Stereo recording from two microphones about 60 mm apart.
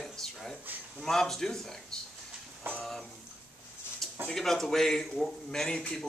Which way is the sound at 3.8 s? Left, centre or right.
Left.